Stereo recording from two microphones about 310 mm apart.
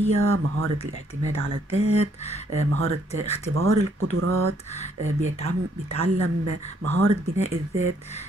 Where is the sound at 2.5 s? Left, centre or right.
Right.